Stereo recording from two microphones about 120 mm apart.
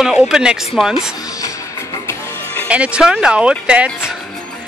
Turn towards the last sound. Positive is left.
turn(degrees=-10)  # may be behind; listen again after turning